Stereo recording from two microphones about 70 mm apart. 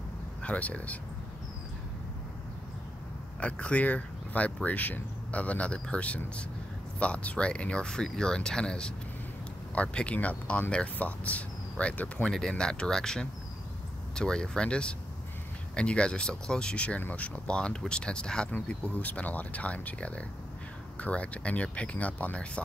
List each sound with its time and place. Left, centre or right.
0.4 s speech: centre
3.3 s speech: centre